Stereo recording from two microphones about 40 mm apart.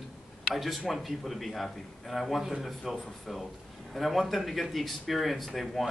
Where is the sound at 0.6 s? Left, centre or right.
Centre.